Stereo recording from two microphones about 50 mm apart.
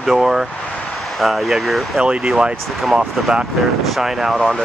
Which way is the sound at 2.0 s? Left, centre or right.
Right.